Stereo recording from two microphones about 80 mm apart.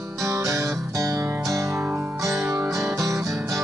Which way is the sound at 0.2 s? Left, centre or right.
Right.